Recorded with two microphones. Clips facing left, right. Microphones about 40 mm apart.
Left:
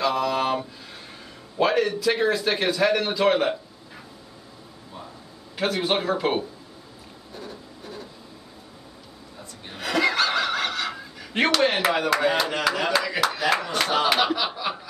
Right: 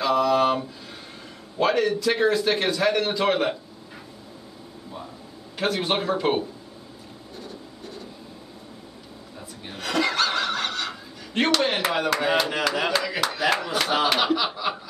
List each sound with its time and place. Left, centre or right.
0.0 s a man's voice: centre
5.6 s a man's voice: centre
7.3 s a sound: centre
9.7 s speech: centre